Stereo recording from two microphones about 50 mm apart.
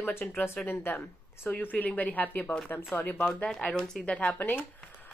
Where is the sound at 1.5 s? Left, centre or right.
Left.